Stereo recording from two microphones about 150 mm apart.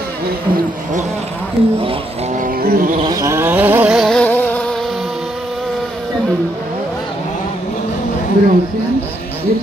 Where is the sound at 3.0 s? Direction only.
25° right (ahead or behind).